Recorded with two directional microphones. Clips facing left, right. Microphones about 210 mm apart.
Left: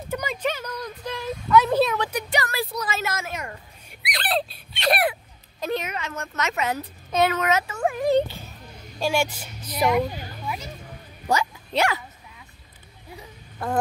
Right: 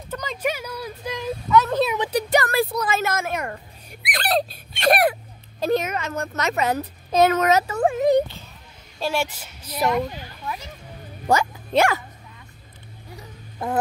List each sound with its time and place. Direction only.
0.1 s a sound: 10° left (ahead or behind)
0.4 s a sound: 10° right (ahead or behind)
1.5 s speech: 5° left (ahead or behind)
2.0 s a woman's voice: 35° right (ahead or behind)
7.9 s speech: 20° right (ahead or behind)
9.0 s speech: centre (ahead or behind)
9.8 s speech: 5° left (ahead or behind)
11.2 s speech: 50° right (ahead or behind)